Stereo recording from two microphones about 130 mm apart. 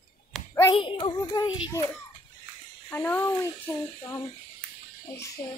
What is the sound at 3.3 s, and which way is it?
Child singing, 20° left (ahead or behind).